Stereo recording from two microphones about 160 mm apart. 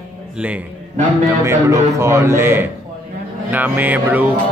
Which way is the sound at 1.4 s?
15° right (ahead or behind).